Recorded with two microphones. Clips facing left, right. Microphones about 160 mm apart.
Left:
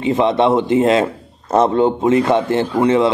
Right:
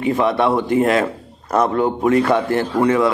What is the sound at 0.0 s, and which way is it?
A man's voice, 25° left (ahead or behind).